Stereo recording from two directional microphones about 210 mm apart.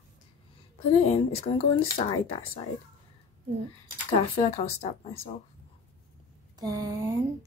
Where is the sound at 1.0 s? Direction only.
30° left (ahead or behind).